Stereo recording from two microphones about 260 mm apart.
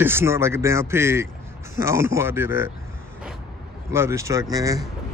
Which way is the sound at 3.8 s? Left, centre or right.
Centre.